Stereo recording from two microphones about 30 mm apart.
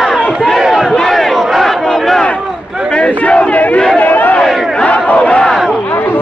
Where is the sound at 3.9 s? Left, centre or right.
Left.